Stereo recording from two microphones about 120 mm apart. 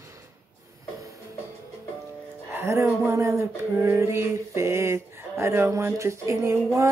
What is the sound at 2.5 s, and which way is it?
Music, 20° right (ahead or behind).